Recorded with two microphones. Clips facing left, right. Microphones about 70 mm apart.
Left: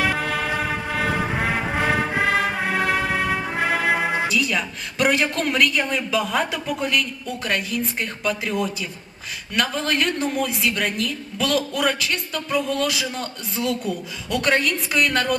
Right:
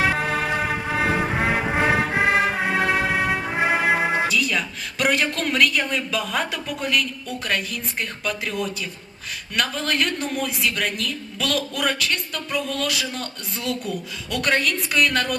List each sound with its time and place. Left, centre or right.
0.0 s music: right; by 4.2 s centre
4.3 s a woman's voice: centre